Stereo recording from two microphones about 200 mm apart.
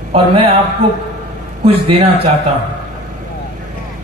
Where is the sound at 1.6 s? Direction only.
30° right (ahead or behind).